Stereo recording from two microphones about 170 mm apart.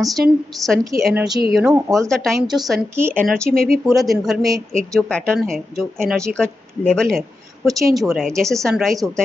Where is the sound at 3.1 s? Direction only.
5° left (ahead or behind).